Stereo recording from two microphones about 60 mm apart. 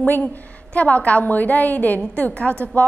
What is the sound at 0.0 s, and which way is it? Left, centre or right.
A woman's voice, left.